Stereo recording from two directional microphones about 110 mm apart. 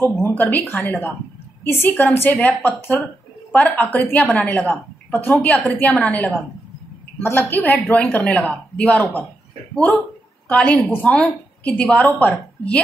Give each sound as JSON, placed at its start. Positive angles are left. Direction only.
{"t": 0.1, "sound": "a woman's voice", "side_deg": 20}